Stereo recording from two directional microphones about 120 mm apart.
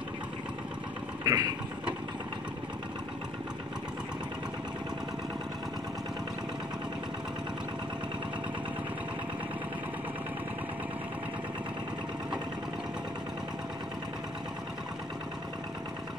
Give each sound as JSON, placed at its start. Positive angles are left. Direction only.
{"t": 1.2, "sound": "vehicle", "side_deg": -30}